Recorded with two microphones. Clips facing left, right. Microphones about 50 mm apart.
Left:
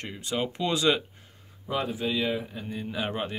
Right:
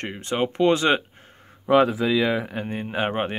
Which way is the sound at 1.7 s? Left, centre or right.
Right.